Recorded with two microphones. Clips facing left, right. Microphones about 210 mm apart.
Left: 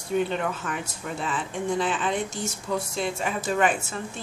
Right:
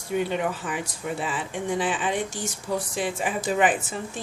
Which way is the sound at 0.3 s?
15° right (ahead or behind).